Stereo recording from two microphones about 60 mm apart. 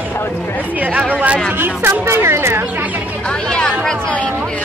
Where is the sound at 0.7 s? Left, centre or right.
Right.